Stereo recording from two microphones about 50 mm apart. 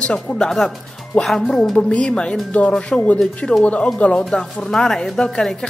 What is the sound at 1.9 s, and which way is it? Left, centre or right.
Speech, left.